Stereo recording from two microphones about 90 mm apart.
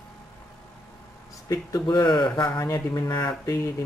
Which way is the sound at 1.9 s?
55° left (ahead or behind).